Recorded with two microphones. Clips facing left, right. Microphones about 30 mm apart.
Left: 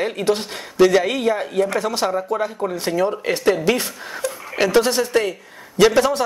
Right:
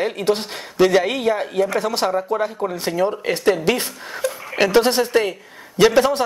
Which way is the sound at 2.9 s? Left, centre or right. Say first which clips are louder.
Even; centre.